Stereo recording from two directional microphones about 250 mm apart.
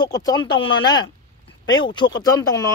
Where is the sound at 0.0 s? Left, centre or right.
Centre.